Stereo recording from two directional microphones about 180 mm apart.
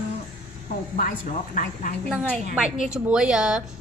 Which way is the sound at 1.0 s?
50° left (ahead or behind).